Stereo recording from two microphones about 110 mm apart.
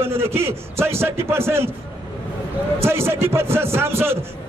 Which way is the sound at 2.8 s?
20° right (ahead or behind).